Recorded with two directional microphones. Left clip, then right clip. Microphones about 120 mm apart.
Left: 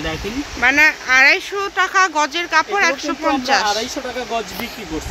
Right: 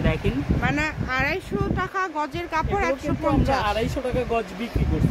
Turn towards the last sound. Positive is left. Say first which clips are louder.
# left 6 dB
turn(degrees=15)  # may be behind; listen again after turning